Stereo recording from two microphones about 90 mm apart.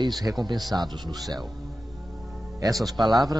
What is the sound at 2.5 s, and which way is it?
Speech, 40° right (ahead or behind).